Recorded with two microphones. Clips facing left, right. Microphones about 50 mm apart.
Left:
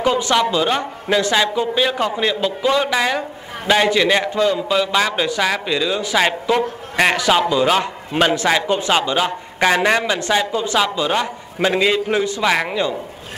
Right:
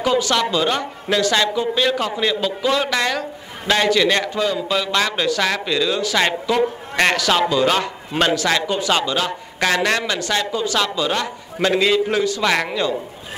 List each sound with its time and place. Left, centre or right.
0.0 s a man's voice: left
12.4 s a man's voice: centre